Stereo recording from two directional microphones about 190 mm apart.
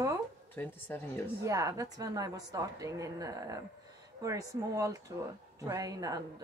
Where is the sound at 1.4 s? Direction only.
15° right (ahead or behind).